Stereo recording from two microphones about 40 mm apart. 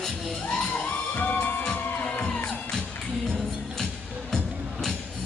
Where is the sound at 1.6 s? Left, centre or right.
Left.